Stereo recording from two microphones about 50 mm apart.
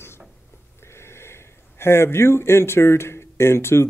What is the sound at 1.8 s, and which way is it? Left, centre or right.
Speech, left.